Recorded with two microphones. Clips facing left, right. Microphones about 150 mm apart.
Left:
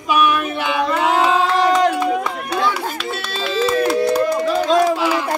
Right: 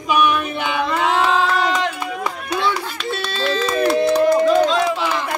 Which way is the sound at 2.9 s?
5° left (ahead or behind).